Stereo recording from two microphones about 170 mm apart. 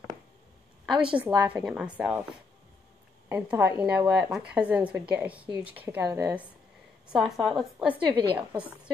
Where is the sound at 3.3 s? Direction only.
10° right (ahead or behind).